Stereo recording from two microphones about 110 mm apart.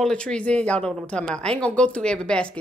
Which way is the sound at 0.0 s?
10° left (ahead or behind).